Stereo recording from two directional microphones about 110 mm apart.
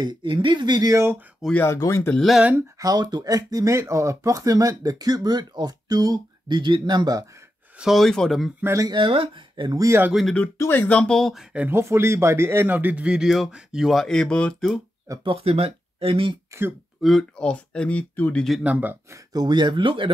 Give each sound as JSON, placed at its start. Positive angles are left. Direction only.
{"t": 0.0, "sound": "speech", "side_deg": -45}
{"t": 1.5, "sound": "speech", "side_deg": 20}
{"t": 2.1, "sound": "speech", "side_deg": 0}
{"t": 2.8, "sound": "speech", "side_deg": -35}
{"t": 7.8, "sound": "speech", "side_deg": 0}
{"t": 8.7, "sound": "speech", "side_deg": -40}
{"t": 9.7, "sound": "speech", "side_deg": -30}
{"t": 10.6, "sound": "speech", "side_deg": 15}
{"t": 11.5, "sound": "speech", "side_deg": -15}
{"t": 15.2, "sound": "speech", "side_deg": -60}
{"t": 17.0, "sound": "speech", "side_deg": 0}
{"t": 18.6, "sound": "speech", "side_deg": -15}
{"t": 19.3, "sound": "speech", "side_deg": -40}